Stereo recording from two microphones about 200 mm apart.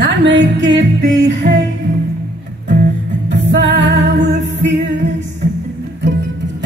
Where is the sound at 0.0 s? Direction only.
60° right (ahead or behind).